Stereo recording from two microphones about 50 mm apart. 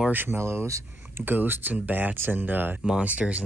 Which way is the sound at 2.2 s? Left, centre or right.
Right.